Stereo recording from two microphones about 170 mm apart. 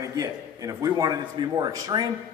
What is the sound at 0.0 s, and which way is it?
A man's voice, 20° right (ahead or behind).